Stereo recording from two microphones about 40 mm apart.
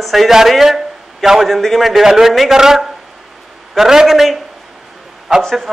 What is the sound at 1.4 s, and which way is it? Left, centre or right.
A man's voice, centre.